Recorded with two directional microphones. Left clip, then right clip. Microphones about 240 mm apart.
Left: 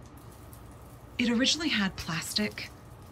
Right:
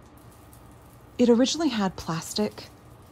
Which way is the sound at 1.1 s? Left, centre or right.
Centre.